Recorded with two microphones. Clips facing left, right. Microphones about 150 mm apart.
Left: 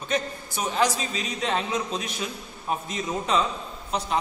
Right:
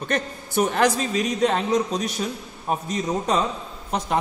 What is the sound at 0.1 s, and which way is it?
A man's voice, 60° right (ahead or behind).